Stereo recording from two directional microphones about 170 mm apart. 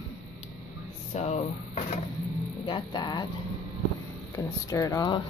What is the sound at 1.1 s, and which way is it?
Speech, 40° left (ahead or behind).